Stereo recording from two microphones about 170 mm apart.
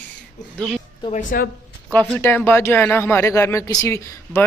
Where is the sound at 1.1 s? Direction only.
60° left (ahead or behind).